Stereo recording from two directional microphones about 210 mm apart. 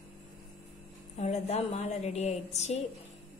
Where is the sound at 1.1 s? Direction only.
30° left (ahead or behind).